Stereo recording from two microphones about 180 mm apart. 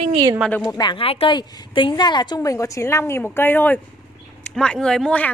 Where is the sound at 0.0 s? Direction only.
25° right (ahead or behind).